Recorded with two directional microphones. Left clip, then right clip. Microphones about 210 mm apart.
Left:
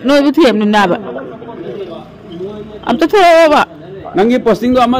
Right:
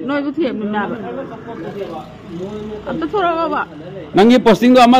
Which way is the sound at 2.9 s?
50° left (ahead or behind).